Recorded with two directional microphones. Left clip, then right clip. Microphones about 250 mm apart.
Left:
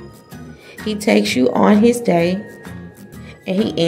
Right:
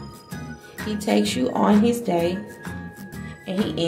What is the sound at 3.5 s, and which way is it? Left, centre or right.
Speech, left.